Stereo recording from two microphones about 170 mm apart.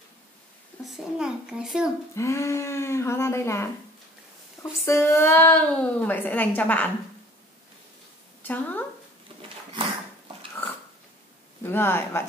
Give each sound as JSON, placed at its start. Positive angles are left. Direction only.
{"t": 0.8, "sound": "a child's voice", "side_deg": -5}
{"t": 2.1, "sound": "a woman's voice", "side_deg": 15}
{"t": 4.8, "sound": "a woman's voice", "side_deg": 15}
{"t": 8.4, "sound": "a sound", "side_deg": 10}
{"t": 11.6, "sound": "a woman's voice", "side_deg": 15}